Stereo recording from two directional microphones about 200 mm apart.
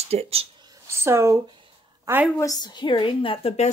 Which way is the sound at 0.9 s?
15° right (ahead or behind).